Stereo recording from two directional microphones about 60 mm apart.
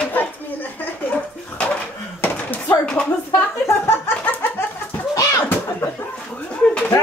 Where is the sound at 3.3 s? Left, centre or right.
Left.